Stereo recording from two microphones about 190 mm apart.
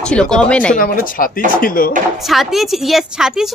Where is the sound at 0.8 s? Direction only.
50° left (ahead or behind).